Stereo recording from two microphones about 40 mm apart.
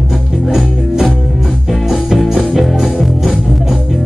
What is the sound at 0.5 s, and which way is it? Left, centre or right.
Music, centre.